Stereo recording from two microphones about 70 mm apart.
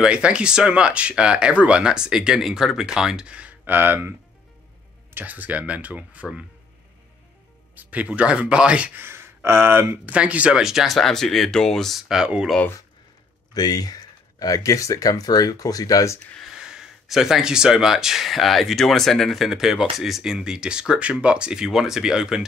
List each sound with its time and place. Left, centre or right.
0.0 s speech: centre; by 4.1 s right
5.1 s speech: right
7.7 s speech: right
9.0 s speech: right
10.0 s speech: centre
10.6 s speech: centre
12.0 s speech: centre
13.5 s speech: left
16.5 s speech: centre